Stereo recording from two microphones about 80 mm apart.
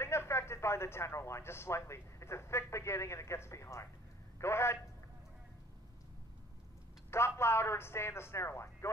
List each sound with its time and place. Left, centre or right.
0.0 s a woman's voice: left
7.1 s a woman's voice: left